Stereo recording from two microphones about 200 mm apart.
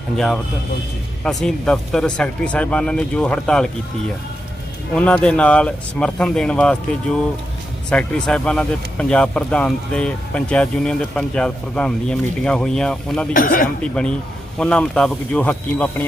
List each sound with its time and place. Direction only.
1.2 s speech: 5° left (ahead or behind)
4.9 s speech: 5° left (ahead or behind)
7.9 s speech: 5° left (ahead or behind)
13.3 s speech: 45° left (ahead or behind)
14.0 s speech: 5° left (ahead or behind)